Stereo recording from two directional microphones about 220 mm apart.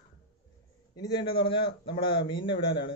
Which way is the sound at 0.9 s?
20° left (ahead or behind).